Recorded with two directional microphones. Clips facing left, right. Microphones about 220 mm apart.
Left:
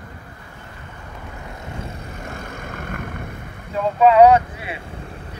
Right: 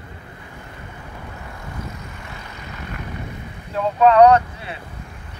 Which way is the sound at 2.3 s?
50° left (ahead or behind).